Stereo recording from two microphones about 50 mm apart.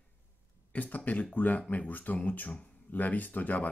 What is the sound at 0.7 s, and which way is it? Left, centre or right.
Speech, left.